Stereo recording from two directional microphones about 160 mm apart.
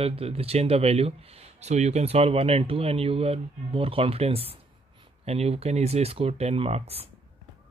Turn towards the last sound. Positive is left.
turn(degrees=-40)  # may be behind; listen again after turning